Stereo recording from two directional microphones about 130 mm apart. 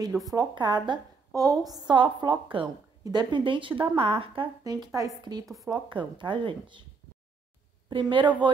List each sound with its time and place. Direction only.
0.3 s speech: 30° right (ahead or behind)
4.6 s speech: 30° right (ahead or behind)
7.9 s speech: 40° right (ahead or behind)